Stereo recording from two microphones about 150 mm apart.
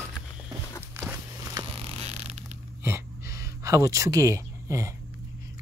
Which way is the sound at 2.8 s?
15° right (ahead or behind).